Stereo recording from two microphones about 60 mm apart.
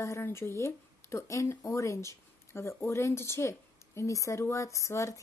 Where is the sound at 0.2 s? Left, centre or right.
Left.